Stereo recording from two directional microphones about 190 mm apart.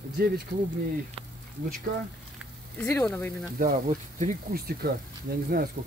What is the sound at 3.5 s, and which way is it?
Speech, 45° right (ahead or behind).